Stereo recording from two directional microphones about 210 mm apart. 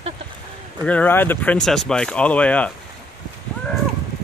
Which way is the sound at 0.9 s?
10° left (ahead or behind).